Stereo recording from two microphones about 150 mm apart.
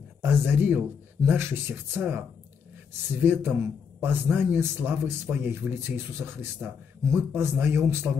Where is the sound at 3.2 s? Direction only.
15° right (ahead or behind).